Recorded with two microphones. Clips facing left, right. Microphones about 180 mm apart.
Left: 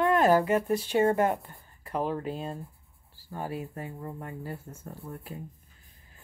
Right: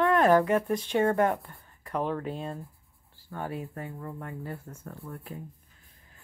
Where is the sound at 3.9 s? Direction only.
20° left (ahead or behind).